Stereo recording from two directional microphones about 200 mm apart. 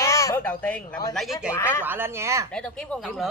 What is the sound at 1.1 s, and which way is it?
Speech, centre (ahead or behind).